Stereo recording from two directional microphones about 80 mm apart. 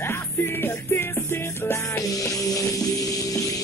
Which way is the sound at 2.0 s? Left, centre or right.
Left.